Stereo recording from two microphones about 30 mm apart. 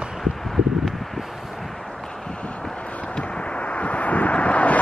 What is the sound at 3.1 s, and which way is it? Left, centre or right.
Vehicle, left.